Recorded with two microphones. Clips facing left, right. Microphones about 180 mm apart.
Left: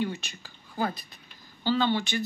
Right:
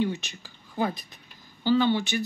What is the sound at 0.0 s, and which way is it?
Speech, 20° right (ahead or behind).